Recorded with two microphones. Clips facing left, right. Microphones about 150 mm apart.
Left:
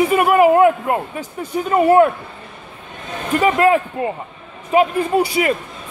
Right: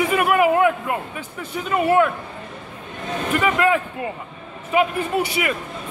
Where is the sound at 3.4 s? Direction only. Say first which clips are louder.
Left 6 dB; 35° left (ahead or behind).